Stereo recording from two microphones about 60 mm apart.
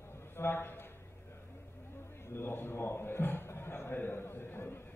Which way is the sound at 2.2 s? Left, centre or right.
Left.